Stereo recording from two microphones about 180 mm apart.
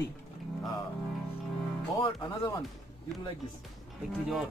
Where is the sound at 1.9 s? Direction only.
25° left (ahead or behind).